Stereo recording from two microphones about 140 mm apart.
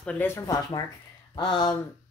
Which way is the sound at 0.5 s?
25° left (ahead or behind).